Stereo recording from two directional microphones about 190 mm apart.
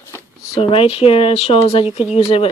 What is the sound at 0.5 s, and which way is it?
Speech, 30° left (ahead or behind).